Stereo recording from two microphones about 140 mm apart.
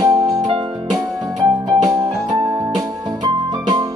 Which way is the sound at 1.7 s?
25° right (ahead or behind).